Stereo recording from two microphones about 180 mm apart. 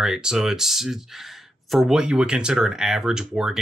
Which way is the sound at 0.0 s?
5° right (ahead or behind).